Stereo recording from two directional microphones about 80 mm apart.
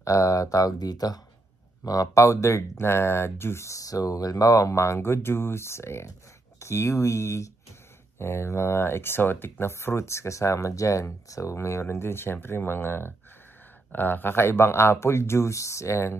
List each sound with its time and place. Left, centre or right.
0.0 s speech: left
1.9 s speech: left